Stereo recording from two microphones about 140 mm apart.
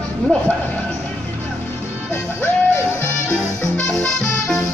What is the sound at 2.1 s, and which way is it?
Music, 20° left (ahead or behind).